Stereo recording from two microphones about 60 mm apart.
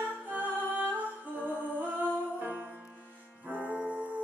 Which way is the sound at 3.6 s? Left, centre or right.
Right.